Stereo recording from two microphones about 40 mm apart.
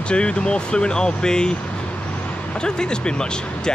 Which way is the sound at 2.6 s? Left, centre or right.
Left.